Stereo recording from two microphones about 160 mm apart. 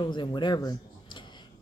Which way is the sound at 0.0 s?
30° left (ahead or behind).